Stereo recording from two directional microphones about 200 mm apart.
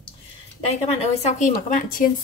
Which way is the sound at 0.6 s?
30° left (ahead or behind).